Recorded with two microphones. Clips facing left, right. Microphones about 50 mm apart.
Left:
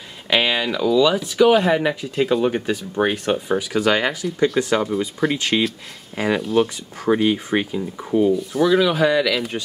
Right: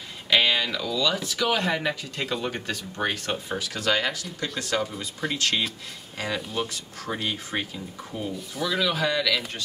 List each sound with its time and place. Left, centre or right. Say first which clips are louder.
0.3 s speech: left 3 dB; centre
8.4 s speech: left 10 dB; centre